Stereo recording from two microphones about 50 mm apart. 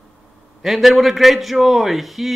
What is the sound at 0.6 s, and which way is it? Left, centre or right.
A man's voice, centre.